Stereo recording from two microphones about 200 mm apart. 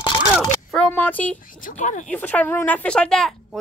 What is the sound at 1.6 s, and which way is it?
Speech, 40° left (ahead or behind).